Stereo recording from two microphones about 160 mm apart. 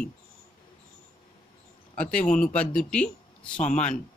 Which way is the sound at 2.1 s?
5° left (ahead or behind).